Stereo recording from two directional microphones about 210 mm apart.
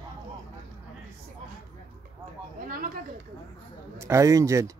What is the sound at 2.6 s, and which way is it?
Speech, 40° right (ahead or behind).